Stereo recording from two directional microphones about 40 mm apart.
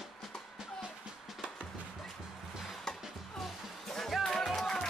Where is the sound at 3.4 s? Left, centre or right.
Centre.